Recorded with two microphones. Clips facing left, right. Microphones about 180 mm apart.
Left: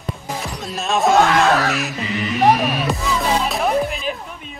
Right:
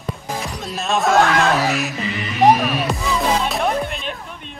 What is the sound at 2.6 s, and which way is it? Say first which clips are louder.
Music: even; centre (ahead or behind).